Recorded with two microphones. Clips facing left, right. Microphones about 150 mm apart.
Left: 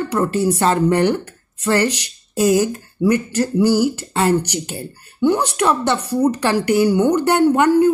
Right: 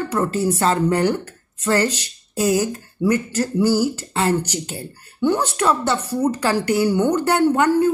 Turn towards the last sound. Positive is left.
turn(degrees=15)  # may be behind; listen again after turning